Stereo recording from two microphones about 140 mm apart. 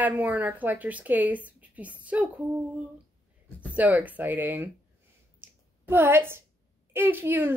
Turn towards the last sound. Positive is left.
turn(degrees=-15)  # may be behind; listen again after turning